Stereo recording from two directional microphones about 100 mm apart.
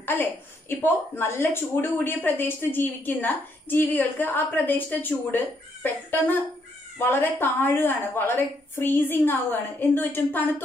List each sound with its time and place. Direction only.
0.0 s a woman's voice: 20° left (ahead or behind)